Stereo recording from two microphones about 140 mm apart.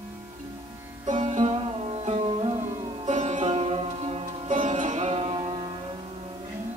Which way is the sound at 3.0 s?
55° right (ahead or behind).